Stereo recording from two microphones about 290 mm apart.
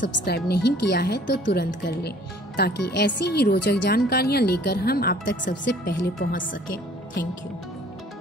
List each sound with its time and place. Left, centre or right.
0.0 s speech: left